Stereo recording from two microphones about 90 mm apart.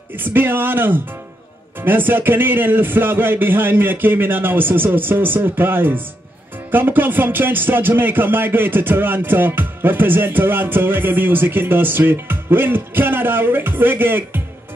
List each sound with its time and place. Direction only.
0.2 s speech: 25° right (ahead or behind)